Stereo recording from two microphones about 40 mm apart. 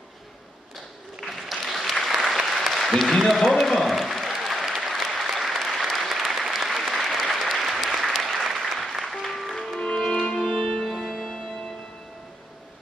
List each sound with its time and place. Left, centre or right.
1.2 s applause: centre
9.0 s music: centre
9.6 s music: centre
10.9 s music: centre